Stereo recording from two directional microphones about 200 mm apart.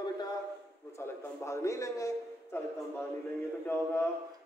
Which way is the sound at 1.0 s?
15° left (ahead or behind).